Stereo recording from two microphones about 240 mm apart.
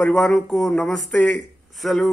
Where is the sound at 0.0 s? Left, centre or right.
Centre.